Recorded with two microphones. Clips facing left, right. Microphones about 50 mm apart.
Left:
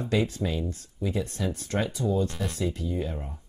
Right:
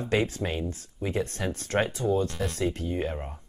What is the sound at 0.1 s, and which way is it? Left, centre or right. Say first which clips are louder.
Speech: even; right.